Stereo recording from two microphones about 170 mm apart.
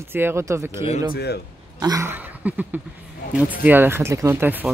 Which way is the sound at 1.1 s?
70° left (ahead or behind).